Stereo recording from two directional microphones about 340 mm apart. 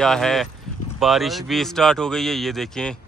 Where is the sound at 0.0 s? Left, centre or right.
Centre.